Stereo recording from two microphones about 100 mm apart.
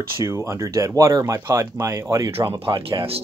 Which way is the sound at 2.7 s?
45° right (ahead or behind).